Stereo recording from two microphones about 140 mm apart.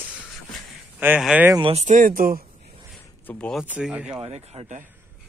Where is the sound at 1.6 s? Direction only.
50° right (ahead or behind); by 2.4 s 90° right.